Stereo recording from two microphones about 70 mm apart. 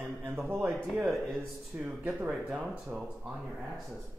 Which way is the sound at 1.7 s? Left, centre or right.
Right.